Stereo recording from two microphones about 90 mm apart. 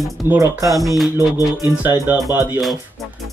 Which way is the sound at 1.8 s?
20° right (ahead or behind).